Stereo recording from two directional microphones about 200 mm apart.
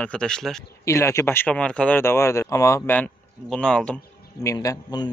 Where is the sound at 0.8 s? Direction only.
15° left (ahead or behind).